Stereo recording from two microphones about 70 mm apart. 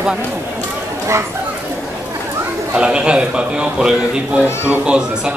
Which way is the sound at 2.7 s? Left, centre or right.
Centre.